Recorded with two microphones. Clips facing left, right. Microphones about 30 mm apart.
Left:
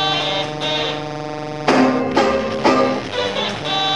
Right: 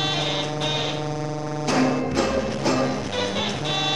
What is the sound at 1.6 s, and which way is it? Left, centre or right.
Music, left.